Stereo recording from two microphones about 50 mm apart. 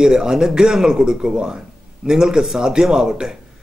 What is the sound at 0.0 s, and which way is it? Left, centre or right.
A man's voice, centre.